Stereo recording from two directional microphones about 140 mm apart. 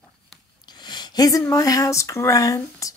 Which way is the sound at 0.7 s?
30° left (ahead or behind).